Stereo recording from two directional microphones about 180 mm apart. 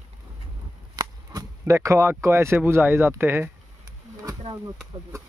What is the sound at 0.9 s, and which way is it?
Speech, 20° right (ahead or behind).